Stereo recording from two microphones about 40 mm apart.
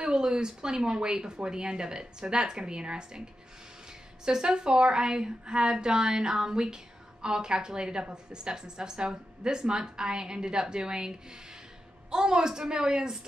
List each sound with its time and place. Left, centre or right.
0.0 s a woman's voice: right